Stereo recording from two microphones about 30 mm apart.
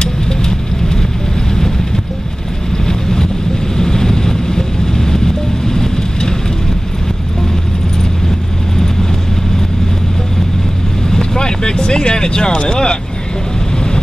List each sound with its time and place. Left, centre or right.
2.9 s vehicle: centre
11.1 s vehicle: left